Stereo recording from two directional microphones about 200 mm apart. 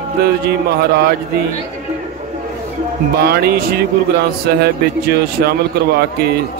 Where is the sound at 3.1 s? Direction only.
50° right (ahead or behind).